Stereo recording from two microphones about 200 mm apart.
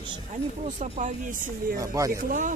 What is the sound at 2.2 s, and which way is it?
Speech, 40° right (ahead or behind).